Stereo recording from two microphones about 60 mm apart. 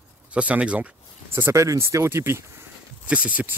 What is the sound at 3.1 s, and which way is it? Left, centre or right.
Speech, right.